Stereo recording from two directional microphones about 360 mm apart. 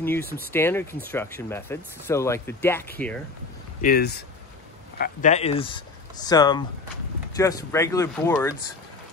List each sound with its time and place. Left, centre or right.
0.0 s speech: centre
3.8 s speech: left; by 8.5 s centre